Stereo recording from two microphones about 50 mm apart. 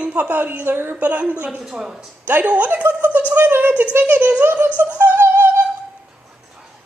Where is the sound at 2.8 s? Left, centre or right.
Right.